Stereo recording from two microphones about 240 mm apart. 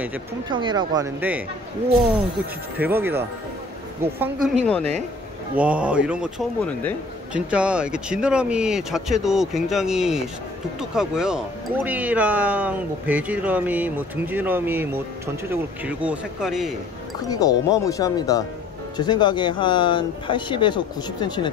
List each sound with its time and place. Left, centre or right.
0.5 s speech: centre
2.8 s speech: centre
4.6 s speech: centre
5.6 s speech: centre
17.2 s speech: centre